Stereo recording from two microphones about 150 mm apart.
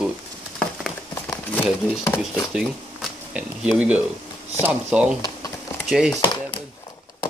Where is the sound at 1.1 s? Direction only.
15° left (ahead or behind).